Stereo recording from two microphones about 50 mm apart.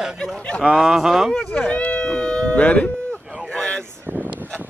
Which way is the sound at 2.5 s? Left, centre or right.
Left.